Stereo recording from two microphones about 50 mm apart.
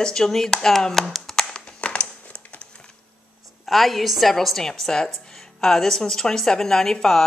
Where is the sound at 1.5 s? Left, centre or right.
Centre.